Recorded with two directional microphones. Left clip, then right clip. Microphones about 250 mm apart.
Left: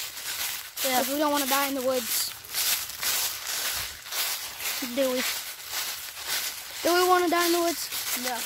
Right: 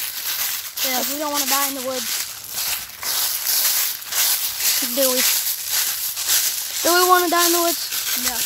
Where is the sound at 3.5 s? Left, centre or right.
Right.